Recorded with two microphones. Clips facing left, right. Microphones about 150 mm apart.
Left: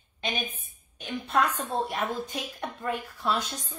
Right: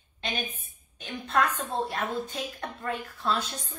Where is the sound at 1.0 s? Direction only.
10° left (ahead or behind).